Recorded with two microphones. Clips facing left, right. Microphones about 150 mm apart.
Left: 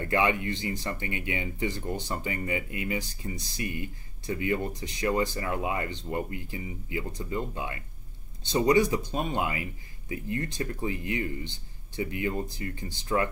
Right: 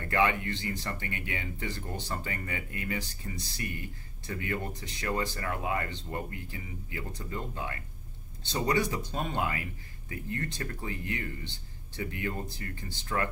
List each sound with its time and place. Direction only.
0.1 s speech: 15° left (ahead or behind)